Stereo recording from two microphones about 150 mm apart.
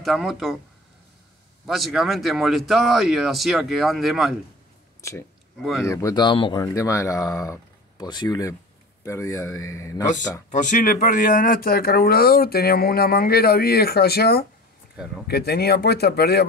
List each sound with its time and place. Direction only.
0.0 s speech: centre (ahead or behind)
1.7 s speech: centre (ahead or behind)
5.6 s speech: centre (ahead or behind)
5.9 s speech: 20° left (ahead or behind)
6.6 s speech: 20° left (ahead or behind)
10.5 s speech: 55° left (ahead or behind); by 16.4 s 90° left